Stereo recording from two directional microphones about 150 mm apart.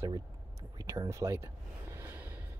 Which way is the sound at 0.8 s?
20° right (ahead or behind).